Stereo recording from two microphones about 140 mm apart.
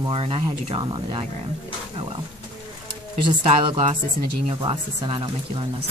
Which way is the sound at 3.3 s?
40° right (ahead or behind).